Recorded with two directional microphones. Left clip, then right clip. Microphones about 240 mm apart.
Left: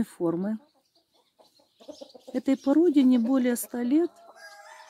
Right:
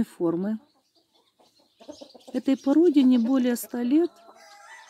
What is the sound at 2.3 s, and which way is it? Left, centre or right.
Speech, centre.